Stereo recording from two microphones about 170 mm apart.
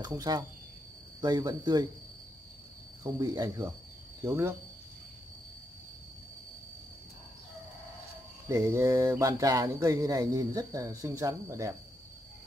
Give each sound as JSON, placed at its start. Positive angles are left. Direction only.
{"t": 0.0, "sound": "speech", "side_deg": -20}
{"t": 3.0, "sound": "speech", "side_deg": -20}
{"t": 8.5, "sound": "speech", "side_deg": -20}